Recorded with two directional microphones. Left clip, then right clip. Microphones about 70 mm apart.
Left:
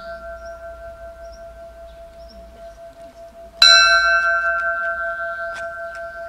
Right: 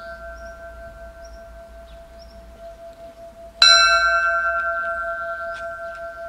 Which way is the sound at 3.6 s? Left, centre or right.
Centre.